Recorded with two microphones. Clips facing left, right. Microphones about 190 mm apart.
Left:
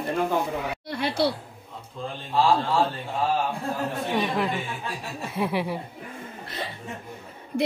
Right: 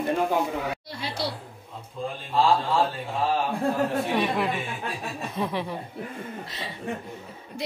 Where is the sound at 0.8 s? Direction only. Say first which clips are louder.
Left 7 dB; 60° left (ahead or behind).